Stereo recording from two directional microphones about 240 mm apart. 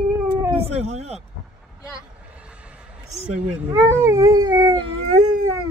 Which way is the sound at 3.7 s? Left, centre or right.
Centre.